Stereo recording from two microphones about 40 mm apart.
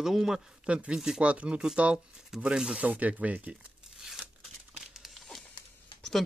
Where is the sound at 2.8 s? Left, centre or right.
Right.